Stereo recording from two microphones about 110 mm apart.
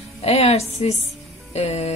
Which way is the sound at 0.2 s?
70° left (ahead or behind).